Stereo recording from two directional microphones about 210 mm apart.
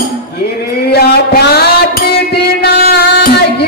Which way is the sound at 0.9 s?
50° left (ahead or behind).